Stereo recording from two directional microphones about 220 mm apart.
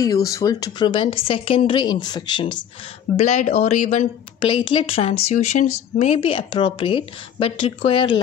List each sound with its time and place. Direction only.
0.0 s speech: 15° left (ahead or behind)
3.2 s speech: 30° left (ahead or behind)
4.5 s speech: 20° left (ahead or behind)